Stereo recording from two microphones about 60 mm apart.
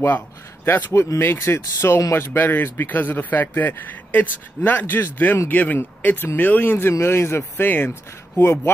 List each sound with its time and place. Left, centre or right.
0.7 s speech: left